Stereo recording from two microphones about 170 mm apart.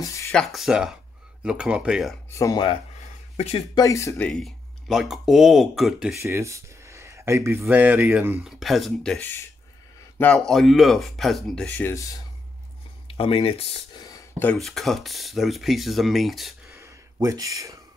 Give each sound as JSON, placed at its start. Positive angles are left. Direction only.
{"t": 0.0, "sound": "speech", "side_deg": 20}
{"t": 0.3, "sound": "speech", "side_deg": 0}
{"t": 2.3, "sound": "speech", "side_deg": 20}
{"t": 4.3, "sound": "speech", "side_deg": 0}
{"t": 6.2, "sound": "speech", "side_deg": -15}
{"t": 8.5, "sound": "speech", "side_deg": 0}
{"t": 13.1, "sound": "speech", "side_deg": 35}
{"t": 14.4, "sound": "speech", "side_deg": 5}
{"t": 16.6, "sound": "a sound", "side_deg": -15}